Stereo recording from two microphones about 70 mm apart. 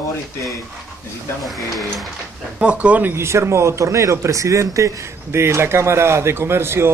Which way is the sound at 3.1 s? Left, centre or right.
Right.